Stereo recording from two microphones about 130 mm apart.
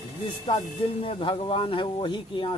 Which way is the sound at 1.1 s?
45° left (ahead or behind).